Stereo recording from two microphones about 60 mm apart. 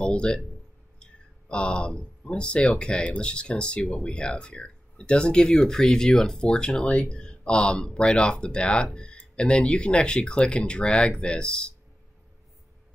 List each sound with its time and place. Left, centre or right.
0.0 s speech: centre
1.5 s speech: centre